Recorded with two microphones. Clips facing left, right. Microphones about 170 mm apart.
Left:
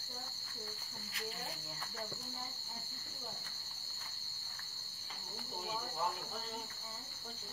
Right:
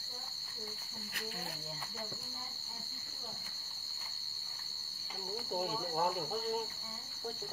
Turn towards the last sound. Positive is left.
turn(degrees=-50)  # may be behind; listen again after turning